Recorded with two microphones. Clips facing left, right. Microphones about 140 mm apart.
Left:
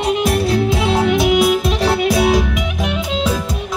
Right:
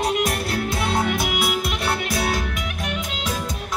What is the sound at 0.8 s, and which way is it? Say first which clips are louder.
Music: left 7 dB; 90° left.